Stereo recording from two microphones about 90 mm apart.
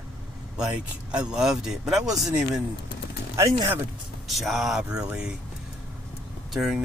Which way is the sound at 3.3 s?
40° right (ahead or behind).